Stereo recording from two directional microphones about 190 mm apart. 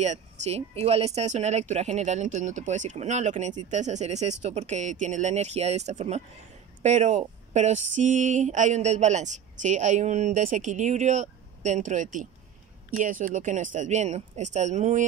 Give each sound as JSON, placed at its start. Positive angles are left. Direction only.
{"t": 0.0, "sound": "speech", "side_deg": -35}